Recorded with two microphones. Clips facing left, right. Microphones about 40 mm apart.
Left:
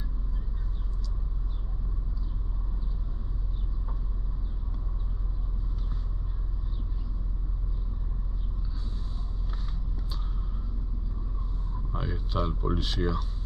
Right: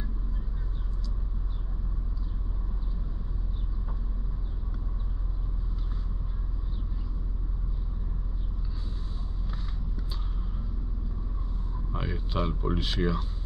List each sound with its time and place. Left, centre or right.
11.9 s speech: right